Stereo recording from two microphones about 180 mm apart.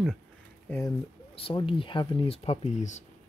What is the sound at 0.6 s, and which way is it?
Speech, 15° left (ahead or behind).